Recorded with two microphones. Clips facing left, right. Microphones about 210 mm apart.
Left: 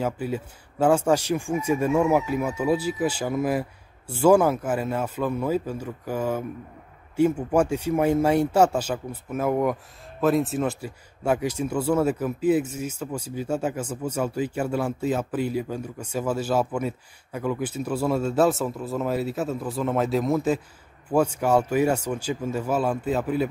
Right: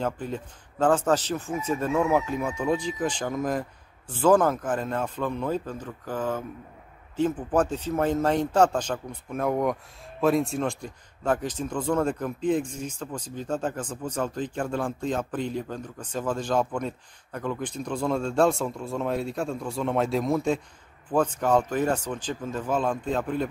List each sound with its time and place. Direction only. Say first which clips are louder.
0.0 s speech: left 3 dB; 10° left (ahead or behind)